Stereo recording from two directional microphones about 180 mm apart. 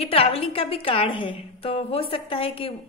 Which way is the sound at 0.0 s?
30° left (ahead or behind).